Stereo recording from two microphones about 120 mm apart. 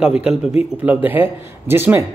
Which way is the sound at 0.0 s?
5° right (ahead or behind).